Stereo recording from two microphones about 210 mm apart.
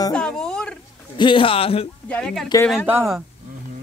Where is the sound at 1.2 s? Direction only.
25° left (ahead or behind).